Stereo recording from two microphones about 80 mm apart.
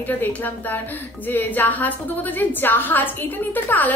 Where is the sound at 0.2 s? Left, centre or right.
Left.